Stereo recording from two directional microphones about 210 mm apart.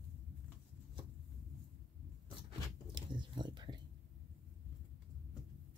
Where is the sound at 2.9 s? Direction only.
20° right (ahead or behind).